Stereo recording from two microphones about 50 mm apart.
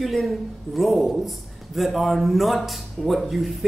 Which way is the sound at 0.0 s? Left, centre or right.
Centre.